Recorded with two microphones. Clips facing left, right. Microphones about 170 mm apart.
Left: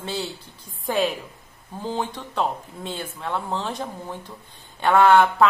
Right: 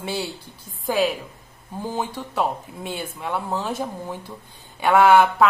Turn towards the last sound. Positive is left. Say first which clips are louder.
# right 1 dB
turn(degrees=-10)  # may be behind; listen again after turning